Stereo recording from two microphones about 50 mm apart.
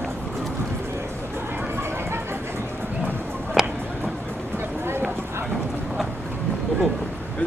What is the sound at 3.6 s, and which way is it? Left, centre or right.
Tick-tock, centre.